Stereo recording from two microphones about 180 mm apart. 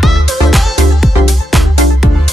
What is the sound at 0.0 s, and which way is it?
Music, centre (ahead or behind).